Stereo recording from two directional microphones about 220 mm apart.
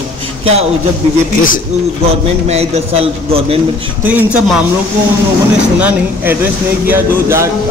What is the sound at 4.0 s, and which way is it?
Speech, 5° right (ahead or behind).